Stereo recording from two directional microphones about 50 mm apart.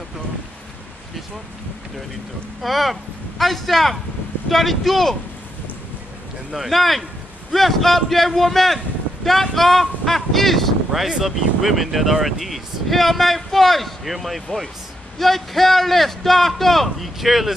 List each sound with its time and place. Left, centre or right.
2.6 s speech: centre
6.5 s speech: centre